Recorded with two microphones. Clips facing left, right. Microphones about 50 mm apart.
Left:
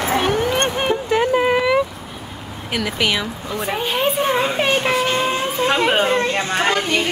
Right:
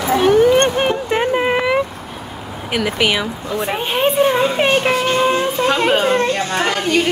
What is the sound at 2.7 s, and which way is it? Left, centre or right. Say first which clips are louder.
Speech: right 3 dB; centre.